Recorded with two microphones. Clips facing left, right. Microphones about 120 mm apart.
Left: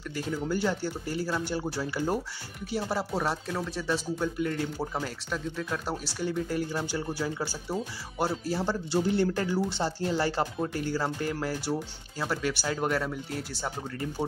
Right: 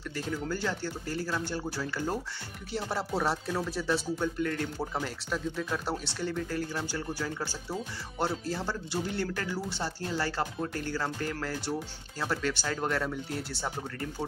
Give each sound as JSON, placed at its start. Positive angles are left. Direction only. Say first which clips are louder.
{"t": 0.1, "sound": "speech", "louder": "left 3 dB", "side_deg": 5}
{"t": 0.5, "sound": "speech", "louder": "left 4 dB", "side_deg": 15}
{"t": 2.7, "sound": "speech", "louder": "left 2 dB", "side_deg": 5}
{"t": 8.9, "sound": "speech", "louder": "left 8 dB", "side_deg": 25}